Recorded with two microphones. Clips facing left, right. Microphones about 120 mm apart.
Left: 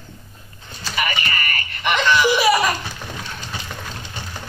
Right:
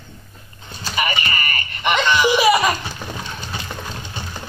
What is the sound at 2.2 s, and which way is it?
Laughter, 15° right (ahead or behind).